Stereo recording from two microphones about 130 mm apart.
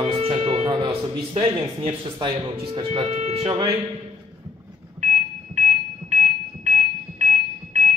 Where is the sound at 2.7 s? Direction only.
50° right (ahead or behind).